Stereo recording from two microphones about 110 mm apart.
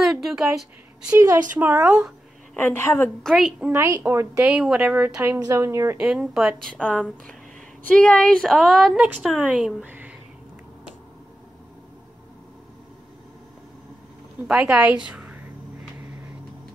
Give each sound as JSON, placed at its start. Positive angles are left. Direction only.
{"t": 0.0, "sound": "a sound", "side_deg": 0}
{"t": 1.1, "sound": "speech", "side_deg": -20}
{"t": 2.5, "sound": "a woman's voice", "side_deg": 20}
{"t": 3.3, "sound": "speech", "side_deg": -10}
{"t": 3.7, "sound": "a woman's voice", "side_deg": -25}
{"t": 4.5, "sound": "speech", "side_deg": -10}
{"t": 5.4, "sound": "a woman's voice", "side_deg": -30}
{"t": 5.9, "sound": "speech", "side_deg": -5}
{"t": 6.6, "sound": "a woman's voice", "side_deg": 5}
{"t": 9.8, "sound": "a sound", "side_deg": -15}
{"t": 14.5, "sound": "speech", "side_deg": -10}
{"t": 15.0, "sound": "a sound", "side_deg": -10}